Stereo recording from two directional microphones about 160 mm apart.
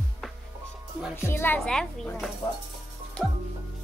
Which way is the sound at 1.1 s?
15° left (ahead or behind).